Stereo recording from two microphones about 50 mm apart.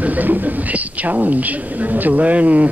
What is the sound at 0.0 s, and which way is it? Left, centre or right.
A woman's voice, right.